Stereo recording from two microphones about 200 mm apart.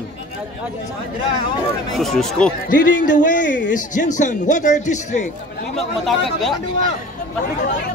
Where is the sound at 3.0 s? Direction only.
40° left (ahead or behind).